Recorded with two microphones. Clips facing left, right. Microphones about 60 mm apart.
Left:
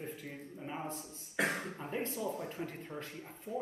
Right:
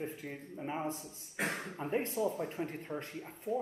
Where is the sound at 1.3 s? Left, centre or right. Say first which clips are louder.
Left 3 dB; left.